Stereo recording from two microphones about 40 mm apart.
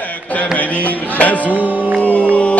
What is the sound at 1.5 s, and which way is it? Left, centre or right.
Music, right.